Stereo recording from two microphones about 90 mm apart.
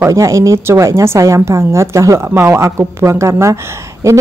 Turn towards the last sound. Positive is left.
turn(degrees=-35)  # may be behind; listen again after turning